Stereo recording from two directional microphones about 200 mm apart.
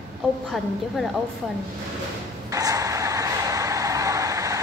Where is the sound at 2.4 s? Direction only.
15° right (ahead or behind).